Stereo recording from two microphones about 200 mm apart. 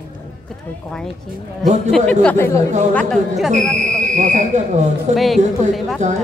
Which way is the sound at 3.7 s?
35° right (ahead or behind).